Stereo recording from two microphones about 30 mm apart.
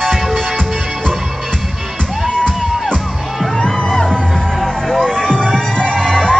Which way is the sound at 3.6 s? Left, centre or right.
Left.